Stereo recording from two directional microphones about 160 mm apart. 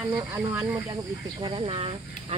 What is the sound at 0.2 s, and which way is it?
Speech, 15° right (ahead or behind).